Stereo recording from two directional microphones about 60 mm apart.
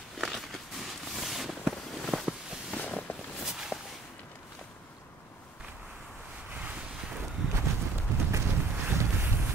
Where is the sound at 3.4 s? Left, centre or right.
Centre.